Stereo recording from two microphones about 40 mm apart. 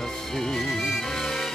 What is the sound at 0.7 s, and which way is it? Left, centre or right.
Music, centre.